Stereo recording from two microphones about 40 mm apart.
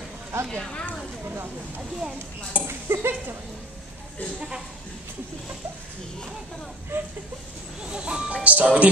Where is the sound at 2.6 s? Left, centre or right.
Right.